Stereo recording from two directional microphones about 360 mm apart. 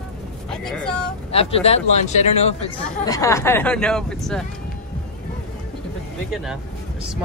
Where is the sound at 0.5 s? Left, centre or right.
Centre.